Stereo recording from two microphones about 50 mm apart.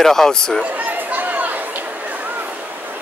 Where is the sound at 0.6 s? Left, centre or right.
Right.